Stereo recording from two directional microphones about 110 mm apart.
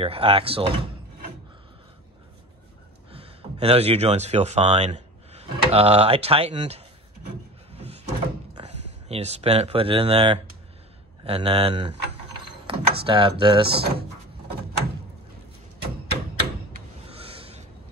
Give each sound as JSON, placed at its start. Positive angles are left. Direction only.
{"t": 0.0, "sound": "speech", "side_deg": -60}
{"t": 3.2, "sound": "speech", "side_deg": -65}
{"t": 7.7, "sound": "door", "side_deg": -75}
{"t": 8.5, "sound": "speech", "side_deg": -75}
{"t": 17.1, "sound": "a sound", "side_deg": -60}